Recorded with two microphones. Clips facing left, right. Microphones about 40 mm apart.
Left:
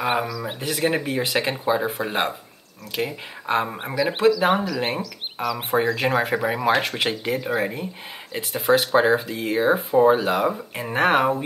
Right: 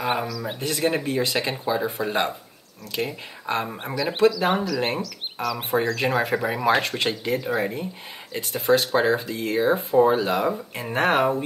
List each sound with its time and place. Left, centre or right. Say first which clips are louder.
0.0 s speech: left 2 dB; centre
1.0 s speech: left 1 dB; left
3.4 s speech: left 3 dB; centre